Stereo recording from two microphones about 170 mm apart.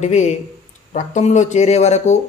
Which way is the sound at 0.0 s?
40° left (ahead or behind).